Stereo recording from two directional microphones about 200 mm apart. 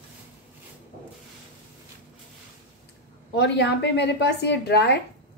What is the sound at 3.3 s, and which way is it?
A woman's voice, 60° left (ahead or behind).